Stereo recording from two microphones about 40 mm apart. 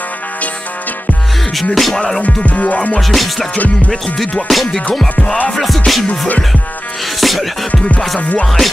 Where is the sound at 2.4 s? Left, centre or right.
Left.